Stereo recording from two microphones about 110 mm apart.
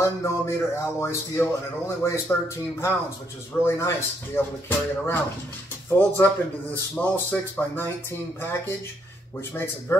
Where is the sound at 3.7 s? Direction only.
25° left (ahead or behind).